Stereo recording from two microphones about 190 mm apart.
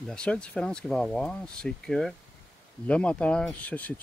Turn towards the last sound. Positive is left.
turn(degrees=10)  # may be behind; listen again after turning